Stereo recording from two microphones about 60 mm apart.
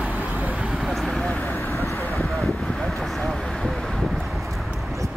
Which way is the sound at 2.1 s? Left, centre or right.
Centre.